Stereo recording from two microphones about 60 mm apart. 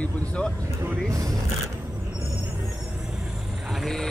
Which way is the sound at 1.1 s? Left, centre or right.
Right.